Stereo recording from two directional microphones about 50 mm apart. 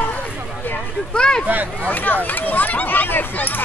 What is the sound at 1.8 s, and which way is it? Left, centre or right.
Speech, left.